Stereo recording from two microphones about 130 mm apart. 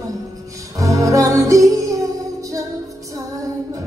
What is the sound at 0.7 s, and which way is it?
Music, 25° right (ahead or behind).